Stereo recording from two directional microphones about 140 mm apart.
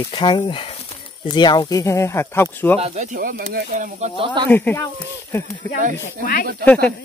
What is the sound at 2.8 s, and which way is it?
Speech, 55° right (ahead or behind).